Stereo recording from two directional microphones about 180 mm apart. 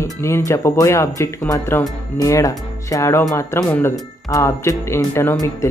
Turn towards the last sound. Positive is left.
turn(degrees=15)  # may be behind; listen again after turning